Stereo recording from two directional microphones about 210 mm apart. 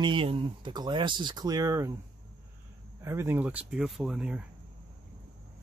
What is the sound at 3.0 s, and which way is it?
Speech, 10° right (ahead or behind).